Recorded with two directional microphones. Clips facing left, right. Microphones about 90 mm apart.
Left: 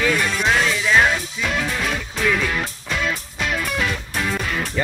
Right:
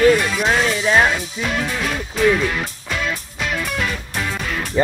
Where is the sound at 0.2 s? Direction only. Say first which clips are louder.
Right 1 dB; 5° right (ahead or behind).